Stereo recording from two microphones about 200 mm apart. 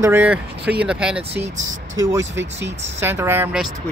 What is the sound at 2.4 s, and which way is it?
Speech, 60° right (ahead or behind).